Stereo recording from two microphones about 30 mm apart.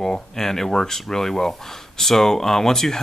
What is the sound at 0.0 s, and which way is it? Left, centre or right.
Speech, centre.